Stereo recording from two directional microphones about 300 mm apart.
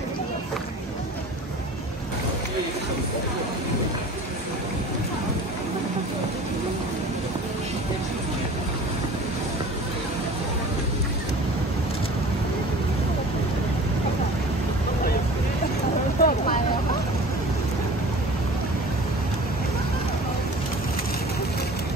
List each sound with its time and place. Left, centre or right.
16.2 s vehicle: left